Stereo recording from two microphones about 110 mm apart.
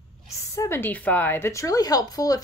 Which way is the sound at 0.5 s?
25° left (ahead or behind).